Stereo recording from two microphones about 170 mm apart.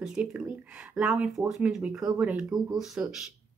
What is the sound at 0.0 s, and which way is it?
A woman's voice, 5° right (ahead or behind).